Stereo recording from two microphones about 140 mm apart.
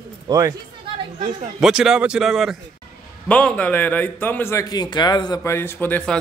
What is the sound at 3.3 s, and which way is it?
A man's voice, 10° left (ahead or behind).